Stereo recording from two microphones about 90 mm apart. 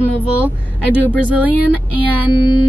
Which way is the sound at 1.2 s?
15° right (ahead or behind).